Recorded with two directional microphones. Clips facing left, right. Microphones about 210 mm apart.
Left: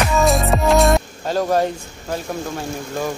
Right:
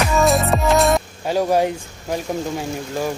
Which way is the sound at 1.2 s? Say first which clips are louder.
Right 2 dB; 10° right (ahead or behind).